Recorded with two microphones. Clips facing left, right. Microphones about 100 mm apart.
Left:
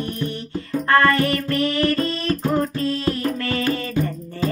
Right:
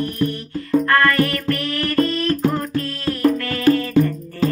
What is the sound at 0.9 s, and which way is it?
Music, 25° left (ahead or behind).